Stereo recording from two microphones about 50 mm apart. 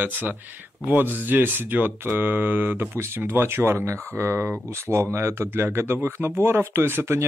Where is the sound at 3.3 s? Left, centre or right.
Right.